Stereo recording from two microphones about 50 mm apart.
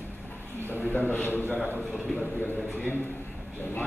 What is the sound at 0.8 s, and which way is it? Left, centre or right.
Speech, left.